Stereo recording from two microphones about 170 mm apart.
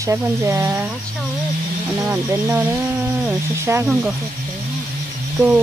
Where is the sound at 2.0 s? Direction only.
15° right (ahead or behind).